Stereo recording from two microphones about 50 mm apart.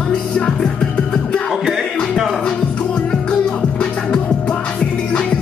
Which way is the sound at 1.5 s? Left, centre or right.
Centre.